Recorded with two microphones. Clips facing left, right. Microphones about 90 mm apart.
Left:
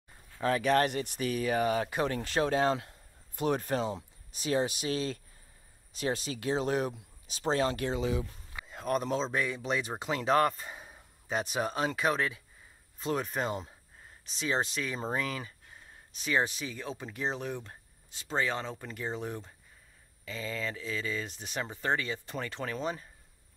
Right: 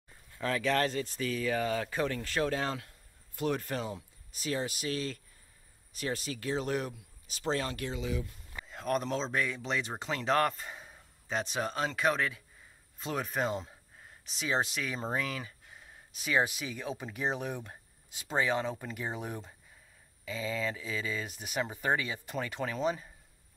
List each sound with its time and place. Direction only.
0.4 s speech: 20° left (ahead or behind)
8.6 s speech: 5° left (ahead or behind)